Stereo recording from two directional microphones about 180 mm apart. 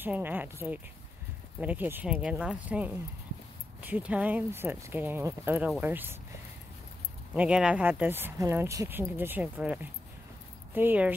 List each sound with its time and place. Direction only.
0.0 s speech: 10° right (ahead or behind)
7.3 s speech: 5° right (ahead or behind)